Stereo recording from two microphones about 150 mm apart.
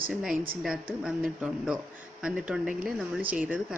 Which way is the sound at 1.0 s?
5° right (ahead or behind).